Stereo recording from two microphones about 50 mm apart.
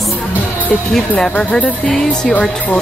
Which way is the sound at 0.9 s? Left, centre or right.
Centre.